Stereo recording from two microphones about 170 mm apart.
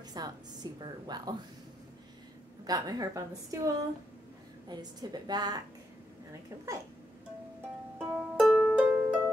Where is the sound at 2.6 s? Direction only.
20° right (ahead or behind).